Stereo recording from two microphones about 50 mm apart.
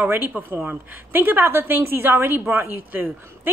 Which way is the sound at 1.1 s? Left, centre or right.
Right.